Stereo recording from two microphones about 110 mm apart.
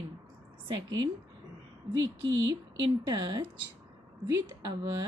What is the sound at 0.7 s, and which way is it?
Speech, 40° right (ahead or behind).